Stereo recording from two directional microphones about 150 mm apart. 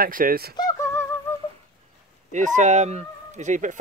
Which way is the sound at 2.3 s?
55° right (ahead or behind).